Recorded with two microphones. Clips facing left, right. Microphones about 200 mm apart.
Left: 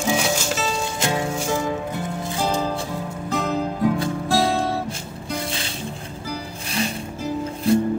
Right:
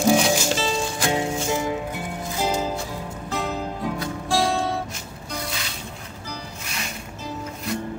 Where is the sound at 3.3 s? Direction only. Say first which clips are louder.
Left 4 dB; centre (ahead or behind).